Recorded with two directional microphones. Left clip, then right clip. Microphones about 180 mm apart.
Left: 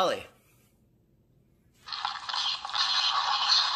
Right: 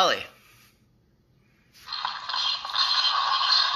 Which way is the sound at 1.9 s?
30° left (ahead or behind).